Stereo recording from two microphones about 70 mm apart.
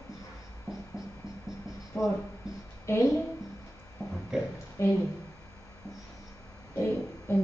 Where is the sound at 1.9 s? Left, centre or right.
Left.